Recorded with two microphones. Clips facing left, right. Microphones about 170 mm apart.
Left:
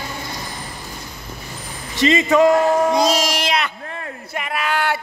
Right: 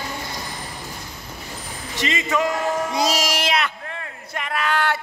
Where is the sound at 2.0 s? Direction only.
30° left (ahead or behind).